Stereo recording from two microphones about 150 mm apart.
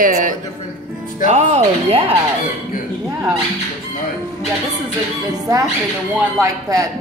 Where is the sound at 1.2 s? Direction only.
50° right (ahead or behind).